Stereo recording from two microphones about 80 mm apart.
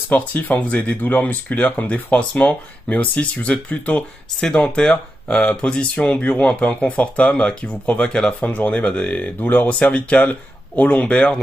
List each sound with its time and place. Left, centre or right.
0.1 s speech: left